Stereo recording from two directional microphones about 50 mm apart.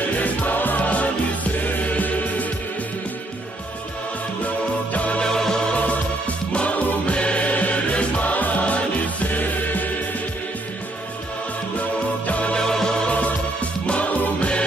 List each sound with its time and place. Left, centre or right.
0.2 s music: left
4.9 s music: left
5.2 s music: centre
5.8 s music: left
12.3 s music: left
12.5 s music: centre
13.1 s music: left